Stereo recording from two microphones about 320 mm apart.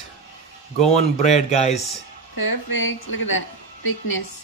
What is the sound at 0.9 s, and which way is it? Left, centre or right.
Speech, left.